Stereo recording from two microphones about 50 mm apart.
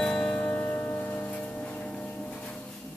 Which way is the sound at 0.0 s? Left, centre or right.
Centre.